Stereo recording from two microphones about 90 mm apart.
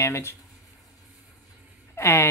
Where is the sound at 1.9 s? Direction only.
30° left (ahead or behind).